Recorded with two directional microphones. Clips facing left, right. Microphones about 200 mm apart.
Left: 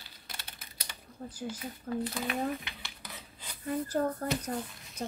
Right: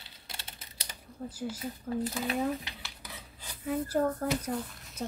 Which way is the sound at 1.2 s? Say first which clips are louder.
Right 3 dB; centre (ahead or behind).